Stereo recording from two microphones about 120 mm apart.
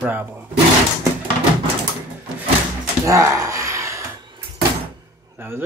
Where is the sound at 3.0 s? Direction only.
25° right (ahead or behind).